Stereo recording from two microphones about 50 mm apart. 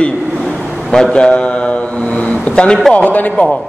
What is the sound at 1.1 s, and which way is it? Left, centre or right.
A man's voice, left.